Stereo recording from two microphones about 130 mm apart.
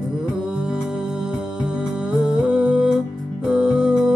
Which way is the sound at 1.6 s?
5° right (ahead or behind).